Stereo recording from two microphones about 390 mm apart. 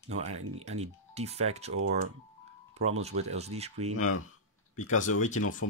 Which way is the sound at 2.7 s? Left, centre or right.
Centre.